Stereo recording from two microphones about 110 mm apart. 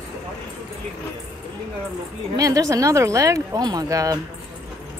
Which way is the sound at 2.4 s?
30° right (ahead or behind).